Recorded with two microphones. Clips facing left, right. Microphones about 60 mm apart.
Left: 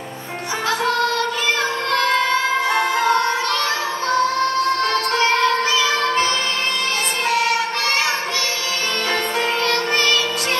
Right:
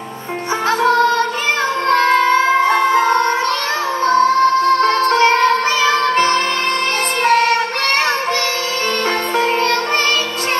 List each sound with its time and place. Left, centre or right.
0.7 s music: right
9.4 s music: right